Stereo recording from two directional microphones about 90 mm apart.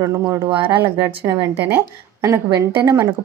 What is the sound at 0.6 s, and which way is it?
A woman's voice, 25° right (ahead or behind).